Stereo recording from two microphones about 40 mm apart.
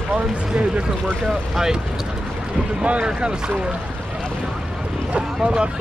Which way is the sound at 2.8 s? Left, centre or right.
Right.